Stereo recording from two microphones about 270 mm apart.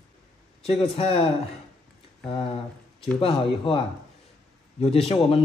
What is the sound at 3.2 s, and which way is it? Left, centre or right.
A man's voice, centre.